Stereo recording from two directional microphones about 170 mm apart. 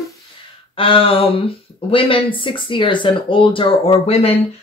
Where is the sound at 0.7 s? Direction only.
30° left (ahead or behind).